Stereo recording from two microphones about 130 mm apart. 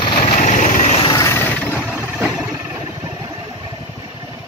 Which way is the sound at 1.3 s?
20° left (ahead or behind).